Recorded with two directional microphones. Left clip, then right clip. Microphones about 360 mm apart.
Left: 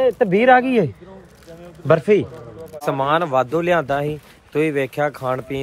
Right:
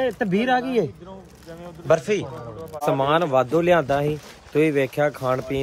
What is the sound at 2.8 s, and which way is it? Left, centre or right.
Speech, centre.